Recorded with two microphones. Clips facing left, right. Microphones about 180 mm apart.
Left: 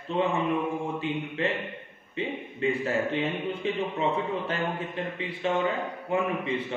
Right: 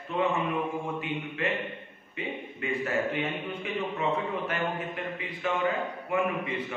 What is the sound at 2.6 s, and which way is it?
Speech, 30° left (ahead or behind).